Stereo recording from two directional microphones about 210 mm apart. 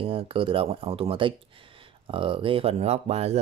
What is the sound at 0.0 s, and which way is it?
Speech, 25° right (ahead or behind).